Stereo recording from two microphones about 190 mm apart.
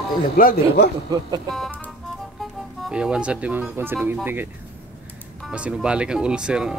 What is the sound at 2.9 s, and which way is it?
Speech, 5° right (ahead or behind).